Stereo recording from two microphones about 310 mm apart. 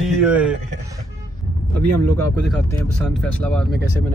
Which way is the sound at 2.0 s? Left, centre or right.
Right.